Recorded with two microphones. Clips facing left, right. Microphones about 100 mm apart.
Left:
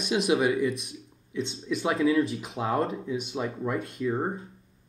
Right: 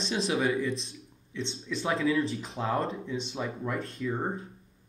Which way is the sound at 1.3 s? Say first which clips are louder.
Left 4 dB; 10° left (ahead or behind).